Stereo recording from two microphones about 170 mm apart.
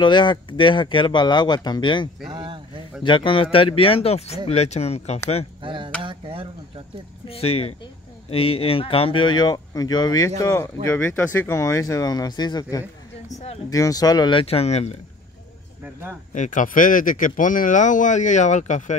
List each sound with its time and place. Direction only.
0.0 s speech: 25° left (ahead or behind)
2.2 s speech: 30° right (ahead or behind)
3.0 s speech: 30° left (ahead or behind)
5.6 s speech: 30° right (ahead or behind)
7.2 s speech: 35° left (ahead or behind)
13.7 s speech: 20° left (ahead or behind); by 15.0 s 40° left (ahead or behind)
15.8 s a man's voice: 10° right (ahead or behind)
16.3 s speech: 50° left (ahead or behind)